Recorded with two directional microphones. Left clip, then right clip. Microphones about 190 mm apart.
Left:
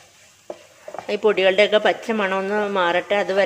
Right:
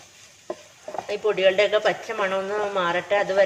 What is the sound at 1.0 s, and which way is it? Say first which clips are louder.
Speech: left 3 dB; 50° left (ahead or behind).